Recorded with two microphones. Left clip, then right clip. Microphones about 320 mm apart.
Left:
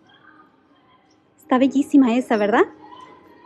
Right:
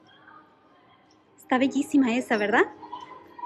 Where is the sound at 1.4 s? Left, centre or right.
Centre.